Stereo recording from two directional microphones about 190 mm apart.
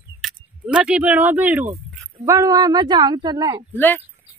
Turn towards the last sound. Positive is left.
turn(degrees=10)  # may be behind; listen again after turning